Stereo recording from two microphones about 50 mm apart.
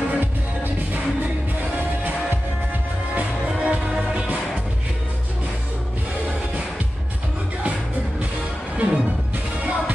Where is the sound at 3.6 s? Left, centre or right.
Centre.